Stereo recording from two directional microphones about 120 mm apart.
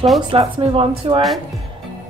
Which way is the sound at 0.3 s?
50° right (ahead or behind).